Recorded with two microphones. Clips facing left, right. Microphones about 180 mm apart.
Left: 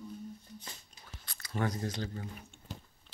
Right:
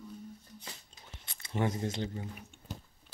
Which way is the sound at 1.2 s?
25° right (ahead or behind).